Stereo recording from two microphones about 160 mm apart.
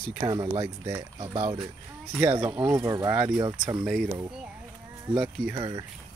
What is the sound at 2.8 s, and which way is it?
Speech, 20° right (ahead or behind).